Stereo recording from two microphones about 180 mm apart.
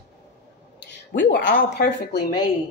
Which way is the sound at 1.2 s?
60° left (ahead or behind).